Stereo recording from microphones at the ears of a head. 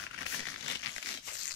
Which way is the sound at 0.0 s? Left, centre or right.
Left.